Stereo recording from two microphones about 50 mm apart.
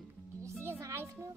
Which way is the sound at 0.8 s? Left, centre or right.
Right.